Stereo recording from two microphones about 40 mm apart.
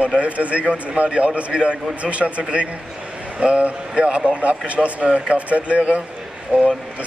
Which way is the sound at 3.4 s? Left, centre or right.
Right.